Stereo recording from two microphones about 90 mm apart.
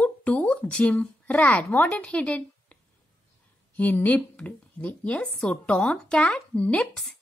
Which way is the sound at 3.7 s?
20° left (ahead or behind).